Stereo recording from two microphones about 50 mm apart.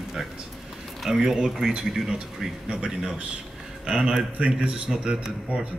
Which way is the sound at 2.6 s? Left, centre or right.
Centre.